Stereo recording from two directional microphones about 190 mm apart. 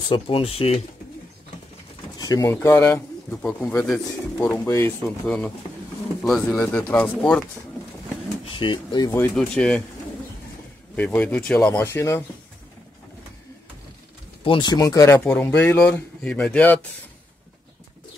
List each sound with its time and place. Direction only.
0.1 s speech: 30° left (ahead or behind)
2.1 s speech: 20° left (ahead or behind)
8.5 s speech: 25° left (ahead or behind)
9.2 s speech: 5° left (ahead or behind)
11.0 s speech: 10° left (ahead or behind)
14.4 s speech: 25° left (ahead or behind); by 16.8 s 10° left (ahead or behind)